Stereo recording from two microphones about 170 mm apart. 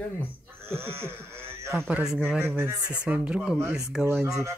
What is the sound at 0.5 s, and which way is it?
Speech, 15° right (ahead or behind).